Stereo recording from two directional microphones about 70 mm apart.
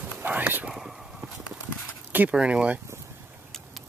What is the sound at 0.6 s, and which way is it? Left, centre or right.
Whispering, centre.